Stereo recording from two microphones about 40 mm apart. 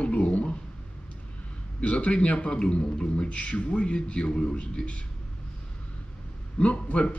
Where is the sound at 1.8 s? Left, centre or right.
Left.